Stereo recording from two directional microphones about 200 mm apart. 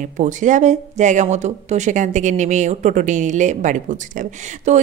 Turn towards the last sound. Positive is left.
turn(degrees=-40)  # may be behind; listen again after turning